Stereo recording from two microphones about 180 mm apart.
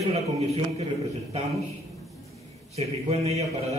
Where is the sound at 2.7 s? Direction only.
35° right (ahead or behind).